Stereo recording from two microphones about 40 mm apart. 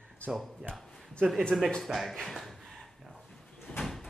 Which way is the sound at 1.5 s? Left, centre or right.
Centre.